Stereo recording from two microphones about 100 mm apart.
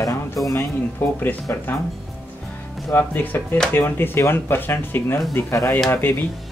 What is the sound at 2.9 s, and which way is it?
Speech, 20° left (ahead or behind).